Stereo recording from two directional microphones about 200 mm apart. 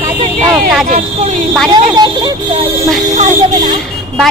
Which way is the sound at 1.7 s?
20° right (ahead or behind).